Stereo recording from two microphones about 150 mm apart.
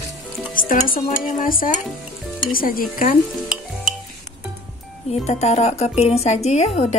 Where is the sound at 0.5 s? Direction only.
65° left (ahead or behind).